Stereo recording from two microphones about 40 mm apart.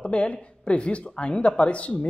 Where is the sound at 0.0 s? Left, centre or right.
Left.